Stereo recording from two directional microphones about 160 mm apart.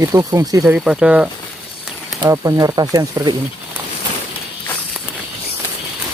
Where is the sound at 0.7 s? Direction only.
5° right (ahead or behind).